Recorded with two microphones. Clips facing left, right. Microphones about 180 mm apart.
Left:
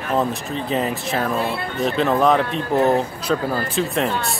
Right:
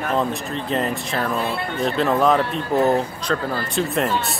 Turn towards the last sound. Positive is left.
turn(degrees=0)  # may be behind; listen again after turning